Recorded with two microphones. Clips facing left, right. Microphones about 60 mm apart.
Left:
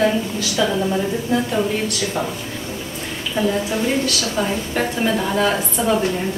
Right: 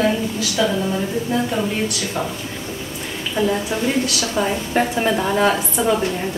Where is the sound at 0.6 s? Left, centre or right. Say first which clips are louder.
Left 1 dB; centre.